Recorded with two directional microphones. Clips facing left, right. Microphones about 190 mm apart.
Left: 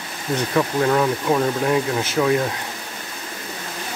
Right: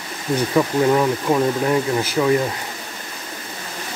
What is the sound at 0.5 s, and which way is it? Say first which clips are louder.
Speech: right 2 dB; 10° right (ahead or behind).